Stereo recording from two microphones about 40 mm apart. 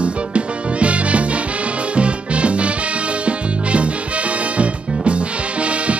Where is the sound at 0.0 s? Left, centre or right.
Right.